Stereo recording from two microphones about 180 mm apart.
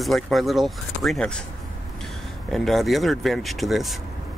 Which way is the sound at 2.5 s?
Centre (ahead or behind).